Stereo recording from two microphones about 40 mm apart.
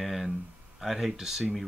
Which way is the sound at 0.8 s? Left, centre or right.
Centre.